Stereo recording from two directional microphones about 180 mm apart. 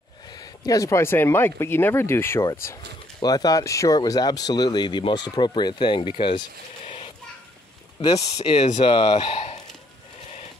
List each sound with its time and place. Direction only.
0.3 s speech: 20° left (ahead or behind)